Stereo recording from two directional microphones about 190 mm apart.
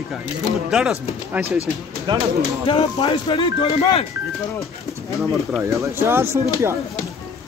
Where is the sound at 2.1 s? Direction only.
25° right (ahead or behind).